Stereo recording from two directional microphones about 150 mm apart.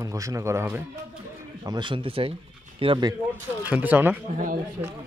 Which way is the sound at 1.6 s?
30° right (ahead or behind).